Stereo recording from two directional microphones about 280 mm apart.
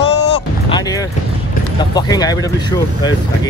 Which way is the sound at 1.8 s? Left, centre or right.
Centre.